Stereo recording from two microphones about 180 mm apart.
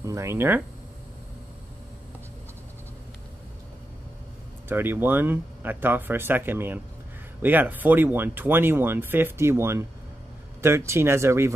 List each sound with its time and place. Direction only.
0.0 s speech: 15° right (ahead or behind)
4.6 s speech: 10° right (ahead or behind)